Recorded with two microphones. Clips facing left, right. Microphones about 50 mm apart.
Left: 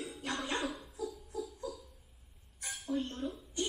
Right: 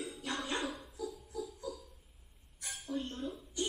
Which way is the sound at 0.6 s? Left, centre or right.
Centre.